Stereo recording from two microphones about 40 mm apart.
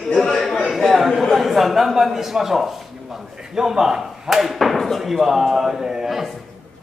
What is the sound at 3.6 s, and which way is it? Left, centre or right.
Slam, centre.